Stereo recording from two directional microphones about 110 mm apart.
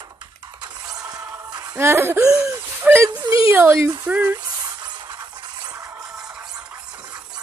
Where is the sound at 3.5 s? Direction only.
20° right (ahead or behind).